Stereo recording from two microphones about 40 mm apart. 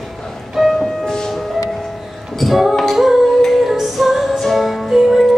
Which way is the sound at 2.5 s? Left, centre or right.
Centre.